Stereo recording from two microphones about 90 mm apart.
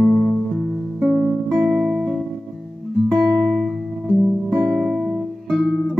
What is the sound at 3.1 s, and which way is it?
Music, 10° left (ahead or behind).